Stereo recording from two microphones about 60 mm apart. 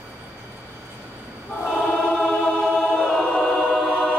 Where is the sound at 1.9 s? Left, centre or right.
Left.